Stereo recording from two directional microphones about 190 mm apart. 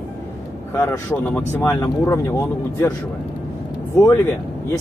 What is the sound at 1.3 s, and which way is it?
Speech, 10° left (ahead or behind).